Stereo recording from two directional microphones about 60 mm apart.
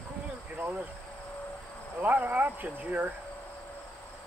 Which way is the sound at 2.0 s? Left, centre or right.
Right.